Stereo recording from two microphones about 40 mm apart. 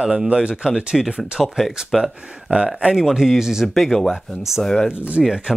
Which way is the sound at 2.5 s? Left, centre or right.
Right.